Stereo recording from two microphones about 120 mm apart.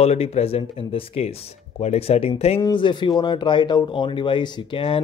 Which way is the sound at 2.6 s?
40° left (ahead or behind).